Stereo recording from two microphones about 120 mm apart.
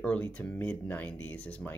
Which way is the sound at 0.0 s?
10° left (ahead or behind).